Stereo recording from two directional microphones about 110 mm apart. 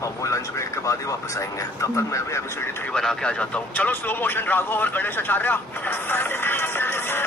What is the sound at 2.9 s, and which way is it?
Speech, 5° left (ahead or behind).